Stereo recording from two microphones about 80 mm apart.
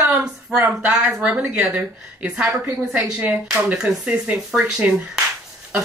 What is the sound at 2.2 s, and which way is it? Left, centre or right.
Speech, centre.